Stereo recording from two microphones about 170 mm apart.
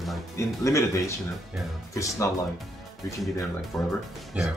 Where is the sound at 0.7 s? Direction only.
20° left (ahead or behind).